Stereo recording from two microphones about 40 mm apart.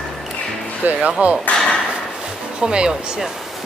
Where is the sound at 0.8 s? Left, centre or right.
Right.